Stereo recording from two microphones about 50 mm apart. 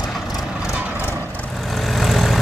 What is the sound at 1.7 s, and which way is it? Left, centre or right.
Vehicle, centre.